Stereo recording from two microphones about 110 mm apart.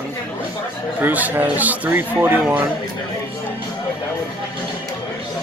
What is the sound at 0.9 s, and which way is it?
Speech, 15° right (ahead or behind).